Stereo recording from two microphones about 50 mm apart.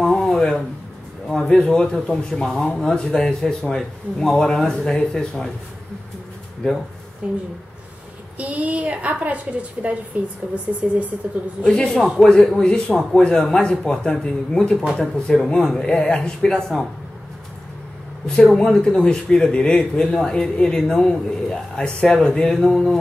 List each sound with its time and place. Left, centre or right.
0.0 s a sound: centre
1.7 s speech: centre
7.2 s a woman's voice: centre
8.4 s a woman's voice: right
11.6 s speech: centre
18.2 s speech: centre